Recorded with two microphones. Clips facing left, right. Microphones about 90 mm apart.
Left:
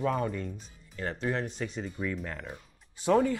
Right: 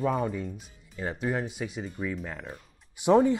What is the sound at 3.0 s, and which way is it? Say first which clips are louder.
Speech: right 4 dB; 20° right (ahead or behind).